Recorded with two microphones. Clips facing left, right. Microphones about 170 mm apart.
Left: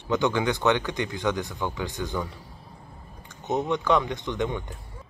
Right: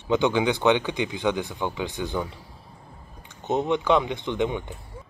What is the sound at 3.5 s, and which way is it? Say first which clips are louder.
Speech: right 2 dB; 20° right (ahead or behind).